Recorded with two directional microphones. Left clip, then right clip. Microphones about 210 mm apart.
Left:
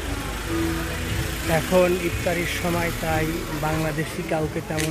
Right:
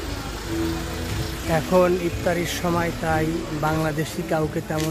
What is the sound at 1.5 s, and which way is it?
Speech, 10° right (ahead or behind).